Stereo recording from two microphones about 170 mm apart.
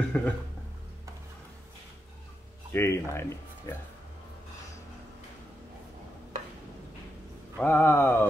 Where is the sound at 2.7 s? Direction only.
15° left (ahead or behind).